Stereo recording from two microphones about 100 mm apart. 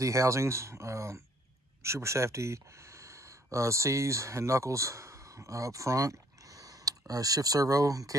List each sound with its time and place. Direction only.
0.0 s speech: 30° right (ahead or behind)